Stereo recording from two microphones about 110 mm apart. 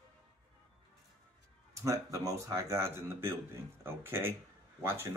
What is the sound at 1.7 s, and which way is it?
Speech, 30° right (ahead or behind).